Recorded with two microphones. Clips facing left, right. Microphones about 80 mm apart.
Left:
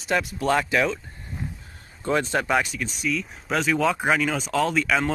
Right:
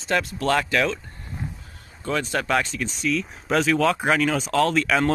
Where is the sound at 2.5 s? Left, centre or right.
Centre.